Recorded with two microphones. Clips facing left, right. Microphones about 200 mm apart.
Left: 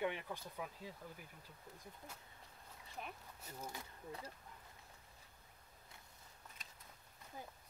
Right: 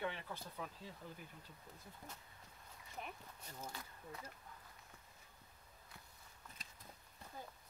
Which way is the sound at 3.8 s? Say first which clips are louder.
Left 2 dB; 30° left (ahead or behind).